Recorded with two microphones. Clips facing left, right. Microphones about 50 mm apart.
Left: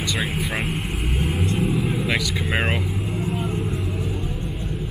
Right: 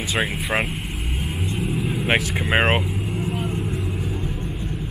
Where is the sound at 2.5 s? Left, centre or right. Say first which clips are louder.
Right 6 dB; right.